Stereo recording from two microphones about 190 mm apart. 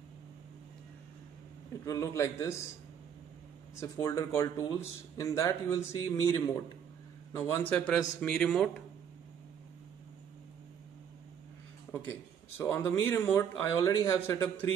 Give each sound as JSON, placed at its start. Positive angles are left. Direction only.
{"t": 1.9, "sound": "speech", "side_deg": 15}
{"t": 3.8, "sound": "a man's voice", "side_deg": 15}
{"t": 12.1, "sound": "speech", "side_deg": 10}